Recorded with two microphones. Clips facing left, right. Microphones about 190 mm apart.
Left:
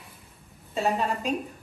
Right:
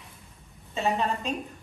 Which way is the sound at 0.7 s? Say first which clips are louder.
Left 1 dB; centre (ahead or behind).